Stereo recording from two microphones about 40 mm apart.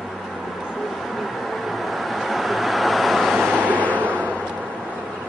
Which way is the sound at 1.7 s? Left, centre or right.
Centre.